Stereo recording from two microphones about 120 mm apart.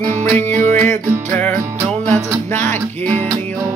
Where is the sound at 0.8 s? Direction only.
15° left (ahead or behind).